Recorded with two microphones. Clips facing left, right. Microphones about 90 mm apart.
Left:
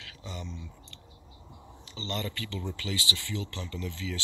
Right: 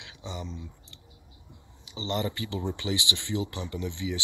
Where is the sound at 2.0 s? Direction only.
20° right (ahead or behind).